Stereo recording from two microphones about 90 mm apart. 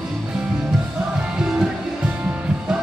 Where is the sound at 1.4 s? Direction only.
5° right (ahead or behind).